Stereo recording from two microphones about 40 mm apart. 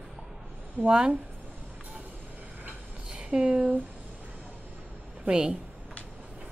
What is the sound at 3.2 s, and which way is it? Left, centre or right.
Speech, right.